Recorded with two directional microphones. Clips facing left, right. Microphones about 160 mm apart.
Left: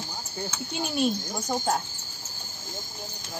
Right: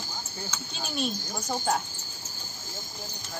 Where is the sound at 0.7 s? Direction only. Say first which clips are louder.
Left 6 dB; 15° left (ahead or behind).